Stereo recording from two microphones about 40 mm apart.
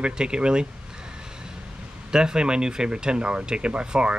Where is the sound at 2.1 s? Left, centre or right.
Centre.